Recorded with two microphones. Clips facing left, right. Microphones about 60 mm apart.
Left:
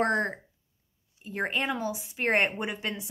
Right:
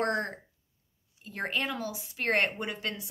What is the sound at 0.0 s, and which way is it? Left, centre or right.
Speech, left.